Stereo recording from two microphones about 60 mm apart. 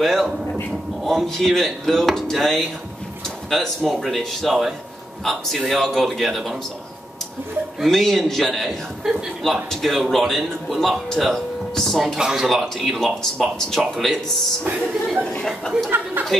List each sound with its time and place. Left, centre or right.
0.0 s a man's voice: centre
7.8 s a man's voice: centre
12.2 s a man's voice: centre
15.7 s speech: centre
16.2 s speech: right